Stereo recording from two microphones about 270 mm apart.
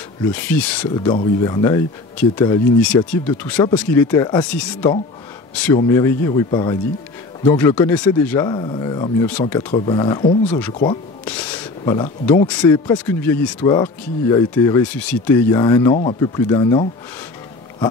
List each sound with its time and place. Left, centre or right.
0.3 s speech: centre
1.0 s speech: centre
9.7 s speech: centre
11.2 s a sound: centre
11.8 s speech: centre